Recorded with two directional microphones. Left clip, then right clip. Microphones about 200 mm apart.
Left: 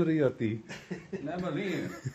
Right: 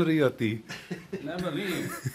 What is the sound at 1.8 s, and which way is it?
Speech, 25° right (ahead or behind).